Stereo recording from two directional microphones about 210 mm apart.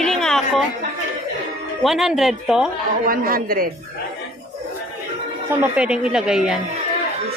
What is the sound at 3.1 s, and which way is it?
Speech, 45° right (ahead or behind).